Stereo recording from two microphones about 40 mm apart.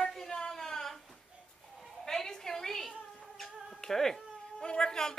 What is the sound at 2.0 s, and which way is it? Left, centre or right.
Speech, centre.